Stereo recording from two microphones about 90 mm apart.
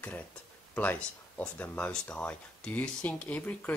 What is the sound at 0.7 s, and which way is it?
Speech, 20° left (ahead or behind).